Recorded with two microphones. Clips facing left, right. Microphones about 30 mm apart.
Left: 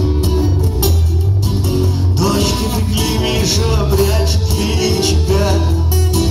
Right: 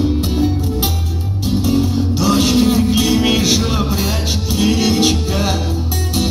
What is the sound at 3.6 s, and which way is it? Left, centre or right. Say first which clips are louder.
Music: left 3 dB; right.